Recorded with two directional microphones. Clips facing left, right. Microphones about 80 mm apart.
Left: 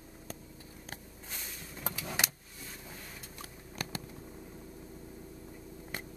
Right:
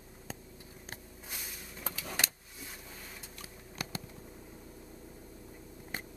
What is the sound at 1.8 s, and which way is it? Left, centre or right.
Vehicle, centre.